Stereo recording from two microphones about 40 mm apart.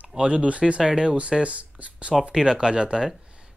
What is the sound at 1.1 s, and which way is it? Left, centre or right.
Speech, right.